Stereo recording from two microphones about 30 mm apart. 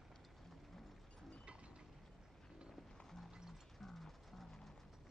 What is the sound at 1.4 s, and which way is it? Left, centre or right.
Mechanisms, right.